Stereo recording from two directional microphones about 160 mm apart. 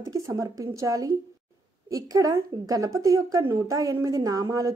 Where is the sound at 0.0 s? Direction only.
20° right (ahead or behind).